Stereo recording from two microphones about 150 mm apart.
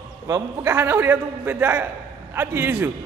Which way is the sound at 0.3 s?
15° right (ahead or behind).